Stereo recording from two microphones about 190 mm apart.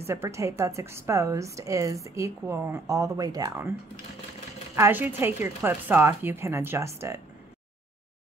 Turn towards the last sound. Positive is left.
turn(degrees=-15)  # may be behind; listen again after turning